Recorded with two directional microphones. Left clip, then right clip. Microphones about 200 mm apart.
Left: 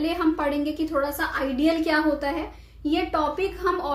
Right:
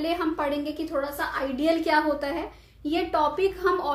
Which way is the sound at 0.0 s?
10° right (ahead or behind).